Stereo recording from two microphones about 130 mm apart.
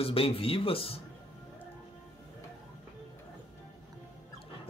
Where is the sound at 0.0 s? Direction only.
45° left (ahead or behind).